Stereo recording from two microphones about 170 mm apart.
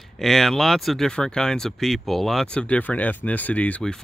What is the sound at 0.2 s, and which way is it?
Speech, centre (ahead or behind).